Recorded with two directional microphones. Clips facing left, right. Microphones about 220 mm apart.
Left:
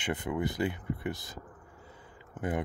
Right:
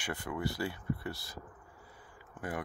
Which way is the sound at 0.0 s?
20° left (ahead or behind).